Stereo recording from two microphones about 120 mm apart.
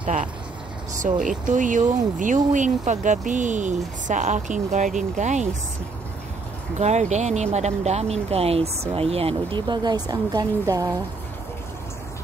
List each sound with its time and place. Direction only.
1.1 s speech: 90° right
6.8 s speech: 70° right (ahead or behind); by 11.0 s 30° right (ahead or behind)